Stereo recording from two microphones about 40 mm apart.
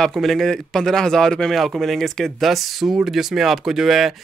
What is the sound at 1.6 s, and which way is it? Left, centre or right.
Speech, centre.